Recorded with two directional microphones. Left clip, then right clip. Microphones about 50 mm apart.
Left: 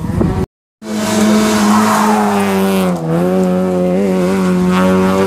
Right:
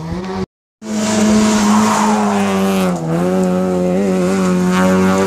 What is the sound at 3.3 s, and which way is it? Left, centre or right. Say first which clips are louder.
Vehicle: left 1 dB; right.